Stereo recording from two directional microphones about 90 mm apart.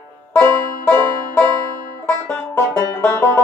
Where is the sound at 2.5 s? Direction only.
25° left (ahead or behind).